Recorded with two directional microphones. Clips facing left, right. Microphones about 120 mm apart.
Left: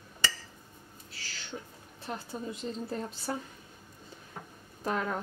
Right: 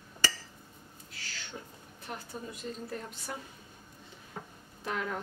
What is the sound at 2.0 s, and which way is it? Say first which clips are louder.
A woman's voice: left 4 dB; 25° left (ahead or behind).